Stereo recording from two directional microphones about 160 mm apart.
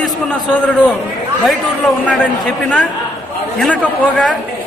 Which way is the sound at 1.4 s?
Centre (ahead or behind).